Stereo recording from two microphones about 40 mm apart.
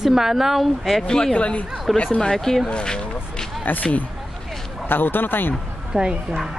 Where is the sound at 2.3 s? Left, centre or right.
Centre.